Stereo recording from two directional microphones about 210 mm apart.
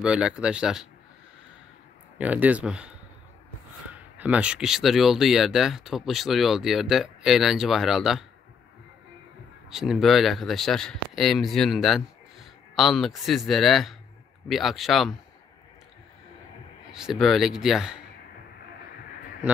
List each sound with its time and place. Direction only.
0.0 s speech: 5° right (ahead or behind)
2.1 s speech: 5° right (ahead or behind)
4.2 s speech: 5° right (ahead or behind)
9.7 s speech: centre (ahead or behind)
16.9 s speech: centre (ahead or behind)